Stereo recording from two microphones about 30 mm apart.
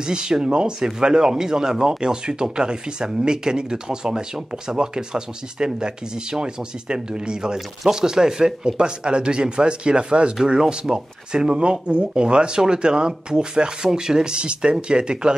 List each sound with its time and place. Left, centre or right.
0.0 s speech: right
8.7 s speech: right
10.9 s speech: right
11.5 s speech: right